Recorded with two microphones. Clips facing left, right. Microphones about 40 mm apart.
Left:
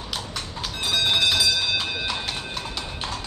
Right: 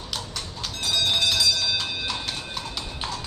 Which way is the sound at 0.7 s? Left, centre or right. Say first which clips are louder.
Left 2 dB; centre.